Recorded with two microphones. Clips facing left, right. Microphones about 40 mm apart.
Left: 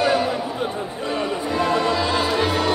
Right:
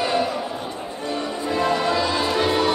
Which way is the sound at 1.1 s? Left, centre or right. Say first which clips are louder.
Left 2 dB; left.